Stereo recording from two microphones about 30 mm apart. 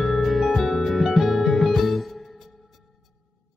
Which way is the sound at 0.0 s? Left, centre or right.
Centre.